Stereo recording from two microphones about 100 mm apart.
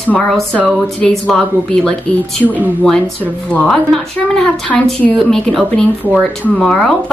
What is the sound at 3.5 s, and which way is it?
A woman's voice, 5° left (ahead or behind).